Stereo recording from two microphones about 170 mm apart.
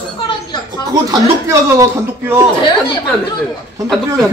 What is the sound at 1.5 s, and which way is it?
Speech, 15° right (ahead or behind).